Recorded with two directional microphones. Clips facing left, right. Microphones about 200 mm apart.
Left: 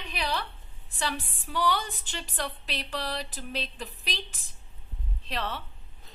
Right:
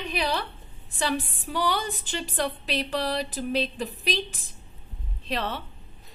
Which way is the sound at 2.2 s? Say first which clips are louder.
Right 6 dB; 25° right (ahead or behind).